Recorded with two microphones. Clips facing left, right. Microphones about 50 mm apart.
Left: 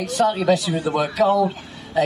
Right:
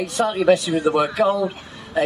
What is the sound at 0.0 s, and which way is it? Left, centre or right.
A man's voice, right.